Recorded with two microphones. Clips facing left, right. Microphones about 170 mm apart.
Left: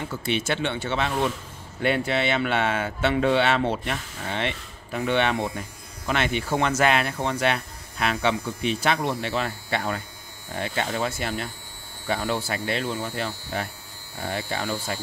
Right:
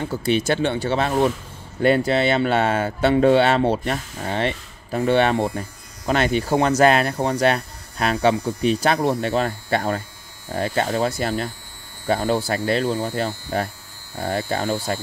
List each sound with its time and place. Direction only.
0.0 s speech: 35° right (ahead or behind)